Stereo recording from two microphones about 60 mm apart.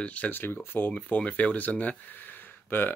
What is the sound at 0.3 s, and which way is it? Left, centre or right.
Speech, left.